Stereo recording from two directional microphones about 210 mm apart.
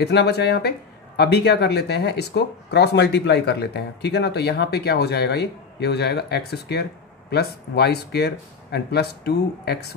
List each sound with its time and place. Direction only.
0.0 s speech: 50° left (ahead or behind)